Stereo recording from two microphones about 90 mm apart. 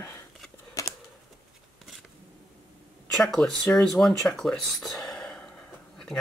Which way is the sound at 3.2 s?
5° left (ahead or behind).